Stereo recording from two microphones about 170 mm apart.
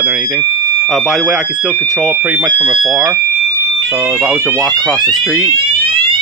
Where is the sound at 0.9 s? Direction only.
5° right (ahead or behind).